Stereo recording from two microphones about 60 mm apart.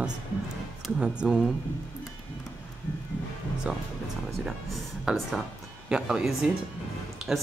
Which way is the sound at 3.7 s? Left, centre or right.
Centre.